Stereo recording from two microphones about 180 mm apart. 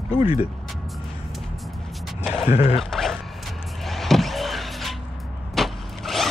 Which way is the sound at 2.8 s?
Centre (ahead or behind).